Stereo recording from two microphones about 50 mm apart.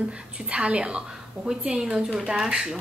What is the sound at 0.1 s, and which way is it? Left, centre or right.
A woman's voice, right.